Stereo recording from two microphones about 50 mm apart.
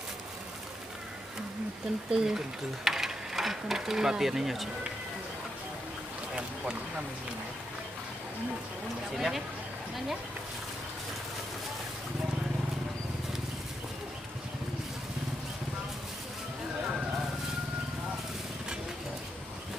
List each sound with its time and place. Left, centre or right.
2.0 s speech: centre
6.3 s a sound: centre
9.1 s speech: centre